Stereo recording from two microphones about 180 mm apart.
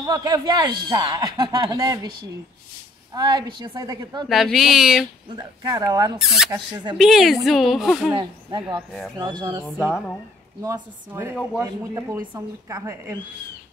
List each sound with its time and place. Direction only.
0.0 s speech: 20° right (ahead or behind)
3.2 s speech: 25° right (ahead or behind)
4.3 s speech: centre (ahead or behind)
5.3 s speech: 20° right (ahead or behind)
6.1 s speech: centre (ahead or behind)
8.2 s a woman's voice: 25° right (ahead or behind)